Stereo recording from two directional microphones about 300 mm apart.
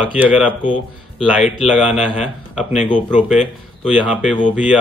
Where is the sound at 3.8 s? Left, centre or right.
Centre.